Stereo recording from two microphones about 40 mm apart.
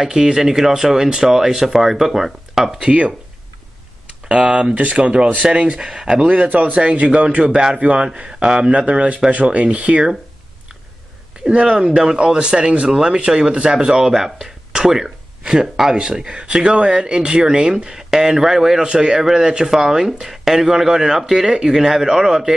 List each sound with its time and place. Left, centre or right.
0.0 s speech: centre
2.8 s speech: right
4.3 s speech: right
4.7 s speech: right; by 6.2 s centre
6.2 s speech: right
8.1 s speech: right
8.7 s speech: right
11.6 s speech: right